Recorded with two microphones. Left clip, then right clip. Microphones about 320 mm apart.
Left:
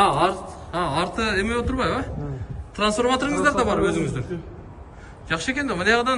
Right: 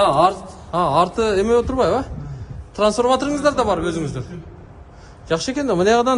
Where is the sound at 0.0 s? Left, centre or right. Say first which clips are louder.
Right 4 dB; centre.